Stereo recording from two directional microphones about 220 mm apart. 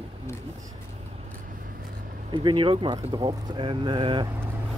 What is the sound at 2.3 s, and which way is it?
Speech, 20° right (ahead or behind).